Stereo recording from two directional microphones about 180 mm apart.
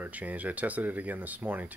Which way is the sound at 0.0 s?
10° right (ahead or behind).